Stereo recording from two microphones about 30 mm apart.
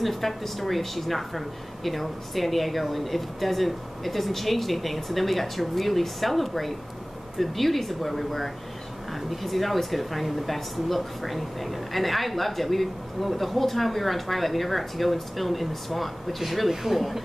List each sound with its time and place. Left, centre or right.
0.0 s a woman's voice: centre